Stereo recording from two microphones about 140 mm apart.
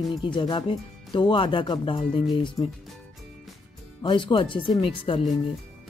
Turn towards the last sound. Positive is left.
turn(degrees=40)  # may be behind; listen again after turning